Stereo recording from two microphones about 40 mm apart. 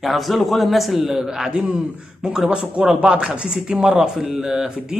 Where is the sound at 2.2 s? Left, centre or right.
Right.